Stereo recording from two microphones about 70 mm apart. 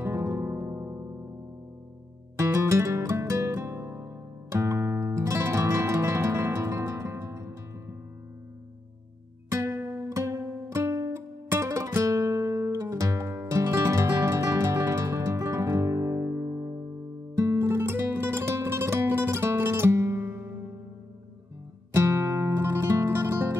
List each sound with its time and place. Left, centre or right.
0.0 s music: right
2.3 s music: right
9.5 s music: right
10.0 s music: right
21.9 s music: right